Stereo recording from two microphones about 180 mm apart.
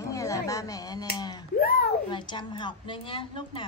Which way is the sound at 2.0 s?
25° left (ahead or behind).